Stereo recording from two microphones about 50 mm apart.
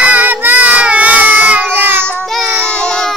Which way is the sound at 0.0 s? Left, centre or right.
Right.